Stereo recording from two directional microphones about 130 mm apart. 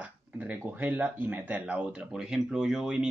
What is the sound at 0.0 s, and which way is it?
Speech, 15° right (ahead or behind).